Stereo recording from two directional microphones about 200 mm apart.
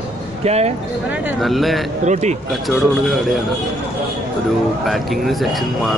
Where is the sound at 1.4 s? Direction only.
Centre (ahead or behind).